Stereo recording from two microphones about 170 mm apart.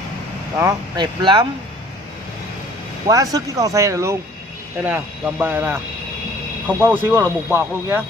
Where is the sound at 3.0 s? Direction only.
20° right (ahead or behind).